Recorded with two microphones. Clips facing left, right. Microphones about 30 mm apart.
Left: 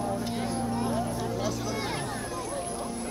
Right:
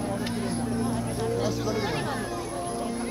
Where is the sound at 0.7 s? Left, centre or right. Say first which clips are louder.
Even; centre.